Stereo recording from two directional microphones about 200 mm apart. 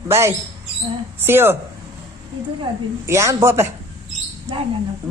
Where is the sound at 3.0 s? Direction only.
15° right (ahead or behind).